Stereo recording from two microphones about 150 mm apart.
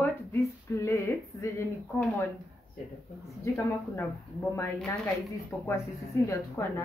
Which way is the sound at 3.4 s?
15° left (ahead or behind).